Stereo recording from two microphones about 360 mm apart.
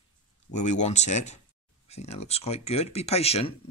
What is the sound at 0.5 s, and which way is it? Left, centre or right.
Speech, centre.